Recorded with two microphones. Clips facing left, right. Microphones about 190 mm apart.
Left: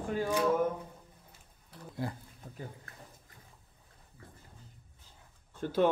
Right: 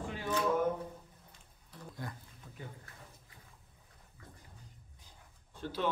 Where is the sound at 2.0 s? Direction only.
30° left (ahead or behind).